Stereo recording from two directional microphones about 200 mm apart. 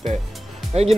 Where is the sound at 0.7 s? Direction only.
30° right (ahead or behind).